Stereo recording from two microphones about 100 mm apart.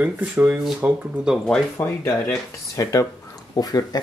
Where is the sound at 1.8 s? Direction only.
25° left (ahead or behind).